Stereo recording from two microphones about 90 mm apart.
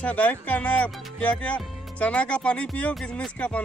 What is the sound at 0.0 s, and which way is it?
Speech, 15° left (ahead or behind).